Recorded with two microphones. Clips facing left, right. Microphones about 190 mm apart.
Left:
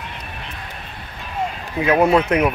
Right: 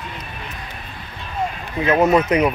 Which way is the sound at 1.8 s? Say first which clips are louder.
Even; 10° left (ahead or behind).